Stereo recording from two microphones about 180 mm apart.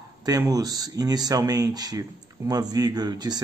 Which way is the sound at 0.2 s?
20° right (ahead or behind).